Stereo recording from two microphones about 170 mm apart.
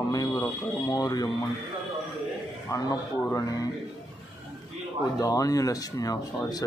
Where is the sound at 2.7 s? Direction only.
20° left (ahead or behind).